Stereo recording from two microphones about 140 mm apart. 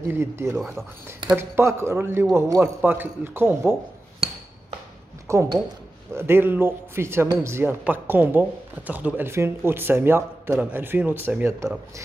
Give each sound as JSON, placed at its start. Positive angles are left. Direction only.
{"t": 0.1, "sound": "speech", "side_deg": -20}
{"t": 5.3, "sound": "speech", "side_deg": -20}